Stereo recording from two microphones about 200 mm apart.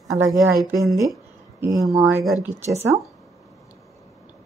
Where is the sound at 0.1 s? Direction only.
15° right (ahead or behind).